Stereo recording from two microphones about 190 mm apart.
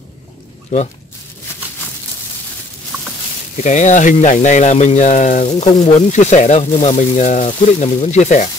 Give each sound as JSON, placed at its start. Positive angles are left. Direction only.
{"t": 0.7, "sound": "speech", "side_deg": 40}
{"t": 3.6, "sound": "speech", "side_deg": 40}